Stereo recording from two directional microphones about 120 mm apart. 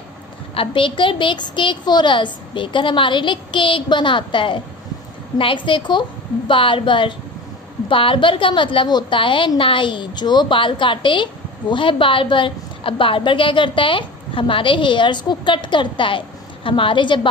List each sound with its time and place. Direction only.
0.6 s a woman's voice: 45° left (ahead or behind)